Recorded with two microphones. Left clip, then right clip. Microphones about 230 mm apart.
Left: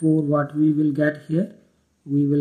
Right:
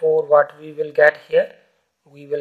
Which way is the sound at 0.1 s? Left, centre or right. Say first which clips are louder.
Right 7 dB; right.